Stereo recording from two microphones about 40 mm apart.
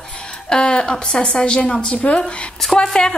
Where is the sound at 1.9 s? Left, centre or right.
Left.